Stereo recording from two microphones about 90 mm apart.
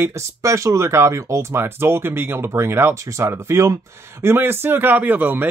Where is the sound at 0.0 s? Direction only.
35° right (ahead or behind).